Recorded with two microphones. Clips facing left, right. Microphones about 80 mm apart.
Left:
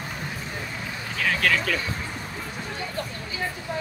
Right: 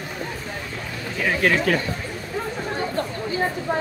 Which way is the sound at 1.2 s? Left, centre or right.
Right.